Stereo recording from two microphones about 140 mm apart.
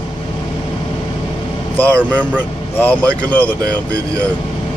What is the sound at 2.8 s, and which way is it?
Speech, 10° left (ahead or behind).